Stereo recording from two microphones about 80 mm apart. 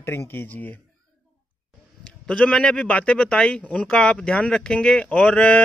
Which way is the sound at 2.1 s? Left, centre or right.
Centre.